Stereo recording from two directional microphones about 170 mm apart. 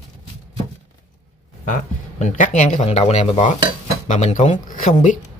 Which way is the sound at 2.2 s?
45° left (ahead or behind).